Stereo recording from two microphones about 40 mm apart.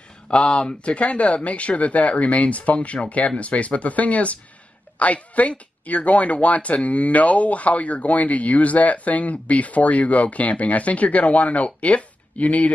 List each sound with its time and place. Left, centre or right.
0.3 s a woman's voice: left